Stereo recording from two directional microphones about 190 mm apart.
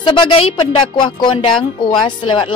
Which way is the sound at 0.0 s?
25° left (ahead or behind).